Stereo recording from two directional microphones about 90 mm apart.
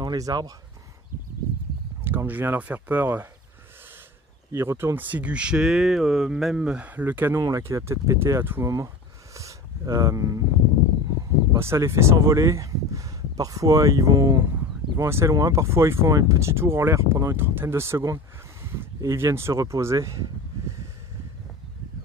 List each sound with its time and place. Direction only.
0.0 s speech: 45° right (ahead or behind)
2.0 s speech: 20° right (ahead or behind)
4.5 s speech: 30° right (ahead or behind)
7.3 s speech: 35° right (ahead or behind)
11.5 s speech: 30° right (ahead or behind)